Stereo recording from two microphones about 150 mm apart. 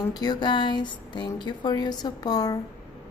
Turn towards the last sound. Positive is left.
turn(degrees=25)  # may be behind; listen again after turning